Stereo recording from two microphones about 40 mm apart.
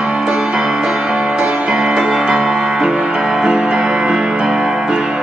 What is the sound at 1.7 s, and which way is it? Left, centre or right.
Music, centre.